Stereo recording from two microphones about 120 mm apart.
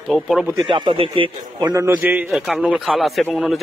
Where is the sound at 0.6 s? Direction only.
45° right (ahead or behind).